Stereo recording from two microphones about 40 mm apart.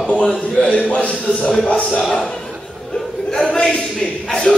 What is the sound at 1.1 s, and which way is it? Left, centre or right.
Speech, left.